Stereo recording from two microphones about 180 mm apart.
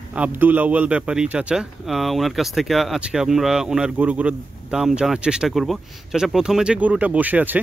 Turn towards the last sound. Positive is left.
turn(degrees=-10)  # may be behind; listen again after turning